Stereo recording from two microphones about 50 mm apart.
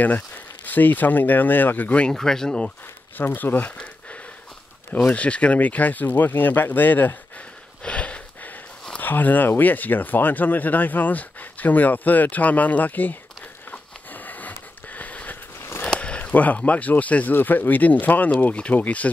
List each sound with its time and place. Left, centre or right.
0.7 s speech: left
2.1 s speech: centre
3.2 s speech: left
3.5 s a sound: left
4.9 s speech: left
7.8 s a sound: left
9.0 s speech: left
13.7 s a sound: left
15.8 s speech: centre